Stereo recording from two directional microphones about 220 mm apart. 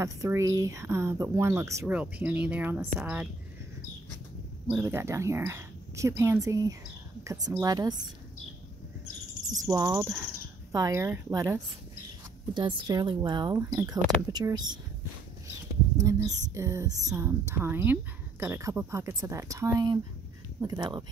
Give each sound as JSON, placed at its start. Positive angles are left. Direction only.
{"t": 0.0, "sound": "speech", "side_deg": -15}
{"t": 4.7, "sound": "speech", "side_deg": -10}
{"t": 9.7, "sound": "speech", "side_deg": -10}
{"t": 12.5, "sound": "speech", "side_deg": -20}
{"t": 16.0, "sound": "speech", "side_deg": -15}